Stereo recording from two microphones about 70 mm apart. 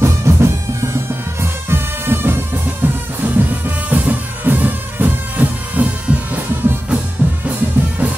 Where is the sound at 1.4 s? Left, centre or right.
Right.